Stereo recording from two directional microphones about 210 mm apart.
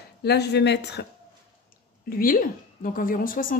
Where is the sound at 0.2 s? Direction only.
50° left (ahead or behind).